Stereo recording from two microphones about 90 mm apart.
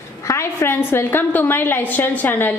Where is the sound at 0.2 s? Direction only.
35° left (ahead or behind).